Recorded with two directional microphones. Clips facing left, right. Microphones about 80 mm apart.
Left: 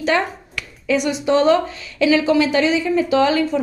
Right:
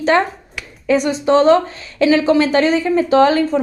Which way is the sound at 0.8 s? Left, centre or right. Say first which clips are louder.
Right 3 dB; right.